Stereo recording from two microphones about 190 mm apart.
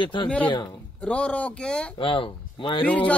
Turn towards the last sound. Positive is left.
turn(degrees=5)  # may be behind; listen again after turning